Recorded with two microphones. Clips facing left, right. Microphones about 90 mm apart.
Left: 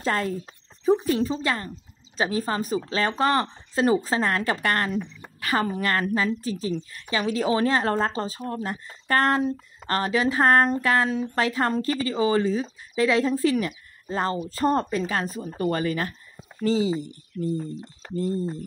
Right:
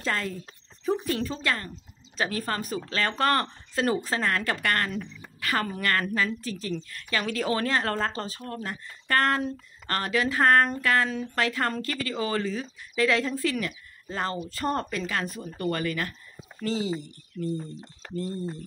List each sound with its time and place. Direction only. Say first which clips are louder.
0.0 s speech: left 5 dB; 35° left (ahead or behind)
0.8 s a woman's voice: left 6 dB; 20° left (ahead or behind)
5.0 s a sound: left 1 dB; 30° left (ahead or behind)
5.8 s a woman's voice: left 2 dB; 25° left (ahead or behind)
17.6 s speech: left 5 dB; 5° left (ahead or behind)